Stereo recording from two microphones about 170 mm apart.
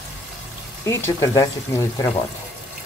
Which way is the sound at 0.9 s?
20° left (ahead or behind).